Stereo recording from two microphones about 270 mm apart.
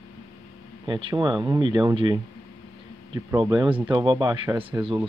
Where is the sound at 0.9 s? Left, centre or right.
Centre.